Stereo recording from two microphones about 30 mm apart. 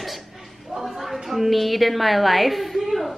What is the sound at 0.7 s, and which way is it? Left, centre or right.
A woman's voice, centre.